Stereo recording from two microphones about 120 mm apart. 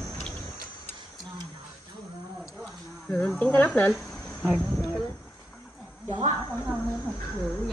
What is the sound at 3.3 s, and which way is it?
Speech, 10° left (ahead or behind).